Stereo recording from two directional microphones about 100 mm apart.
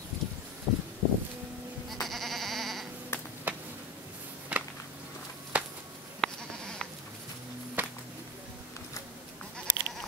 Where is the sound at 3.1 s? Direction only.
25° left (ahead or behind).